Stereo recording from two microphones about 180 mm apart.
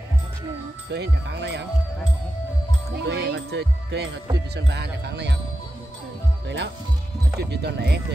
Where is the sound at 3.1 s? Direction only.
65° right (ahead or behind).